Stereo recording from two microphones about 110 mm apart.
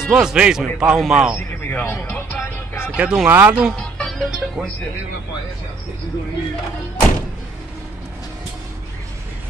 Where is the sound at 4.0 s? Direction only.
Centre (ahead or behind).